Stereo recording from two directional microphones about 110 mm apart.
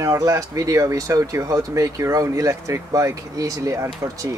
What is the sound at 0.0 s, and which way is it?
Speech, 30° right (ahead or behind).